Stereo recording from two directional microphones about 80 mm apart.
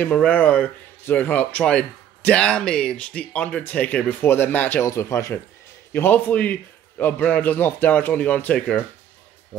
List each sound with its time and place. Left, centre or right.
0.0 s speech: centre
4.8 s speech: left
5.9 s a man's voice: left